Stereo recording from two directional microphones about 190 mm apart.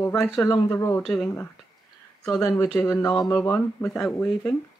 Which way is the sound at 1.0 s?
Centre (ahead or behind).